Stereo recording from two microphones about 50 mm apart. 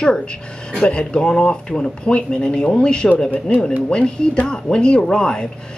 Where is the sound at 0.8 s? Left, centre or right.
Centre.